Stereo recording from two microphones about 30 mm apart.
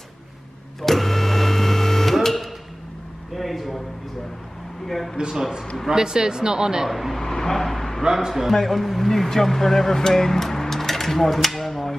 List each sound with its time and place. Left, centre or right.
0.8 s printer: centre
2.2 s a sound: centre
4.8 s a sound: centre
5.1 s speech: right
6.9 s speech: centre
7.2 s vehicle: centre
8.0 s speech: centre
8.6 s speech: centre